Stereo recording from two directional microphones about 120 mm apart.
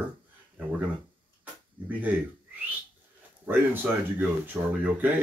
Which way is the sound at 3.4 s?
15° right (ahead or behind).